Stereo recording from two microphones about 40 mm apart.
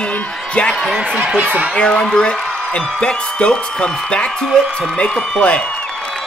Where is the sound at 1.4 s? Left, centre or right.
Right.